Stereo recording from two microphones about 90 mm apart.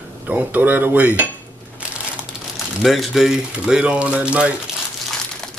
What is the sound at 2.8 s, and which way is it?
Speech, centre (ahead or behind).